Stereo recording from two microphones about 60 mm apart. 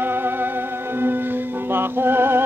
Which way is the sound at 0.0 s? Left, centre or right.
Right.